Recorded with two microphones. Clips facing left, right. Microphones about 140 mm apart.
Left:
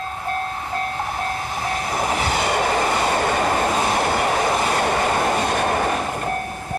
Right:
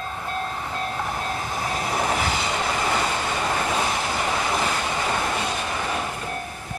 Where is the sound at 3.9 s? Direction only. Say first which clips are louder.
Left 6 dB; 55° left (ahead or behind).